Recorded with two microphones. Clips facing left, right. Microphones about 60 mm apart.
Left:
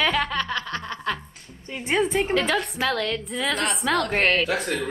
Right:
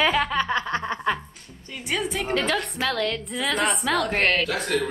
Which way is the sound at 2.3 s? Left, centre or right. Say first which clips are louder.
Left 1 dB; centre.